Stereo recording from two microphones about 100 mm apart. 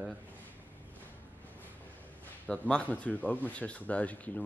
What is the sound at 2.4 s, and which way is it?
Speech, 10° left (ahead or behind).